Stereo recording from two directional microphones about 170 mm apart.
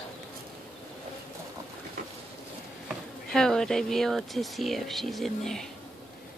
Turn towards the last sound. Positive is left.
turn(degrees=0)  # may be behind; listen again after turning